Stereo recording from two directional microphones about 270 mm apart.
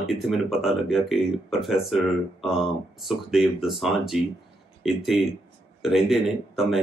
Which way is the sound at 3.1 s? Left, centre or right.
Centre.